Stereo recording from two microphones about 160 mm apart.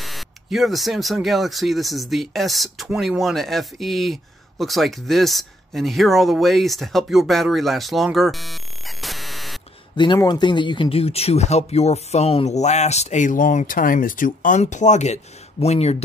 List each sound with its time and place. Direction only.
0.0 s speech: centre (ahead or behind)
9.9 s speech: 25° left (ahead or behind)